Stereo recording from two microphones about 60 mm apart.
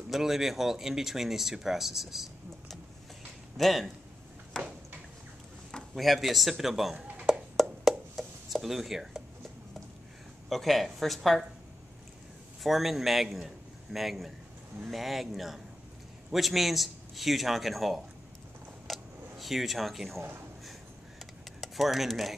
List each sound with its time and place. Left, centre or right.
0.1 s speech: centre
4.6 s a sound: centre
5.9 s speech: centre
7.2 s a sound: centre
10.5 s speech: centre
12.6 s speech: centre
18.9 s a sound: centre
20.2 s speech: right
21.5 s speech: centre